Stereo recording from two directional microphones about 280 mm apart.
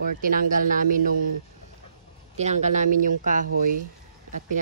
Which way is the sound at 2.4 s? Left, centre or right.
Right.